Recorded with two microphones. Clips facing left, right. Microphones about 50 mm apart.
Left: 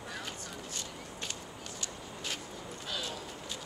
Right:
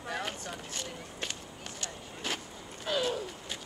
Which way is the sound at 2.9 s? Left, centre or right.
Right.